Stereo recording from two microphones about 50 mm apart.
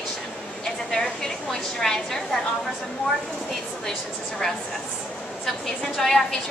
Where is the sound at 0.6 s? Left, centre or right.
Centre.